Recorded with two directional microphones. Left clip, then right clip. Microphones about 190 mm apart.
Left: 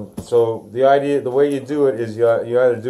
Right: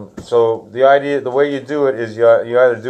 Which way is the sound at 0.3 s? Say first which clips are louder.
Right 3 dB; 15° left (ahead or behind).